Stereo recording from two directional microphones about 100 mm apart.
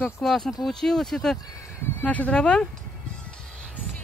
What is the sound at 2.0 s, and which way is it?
Speech, 15° left (ahead or behind).